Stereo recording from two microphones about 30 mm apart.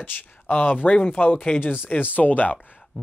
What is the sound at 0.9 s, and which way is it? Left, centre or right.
Speech, left.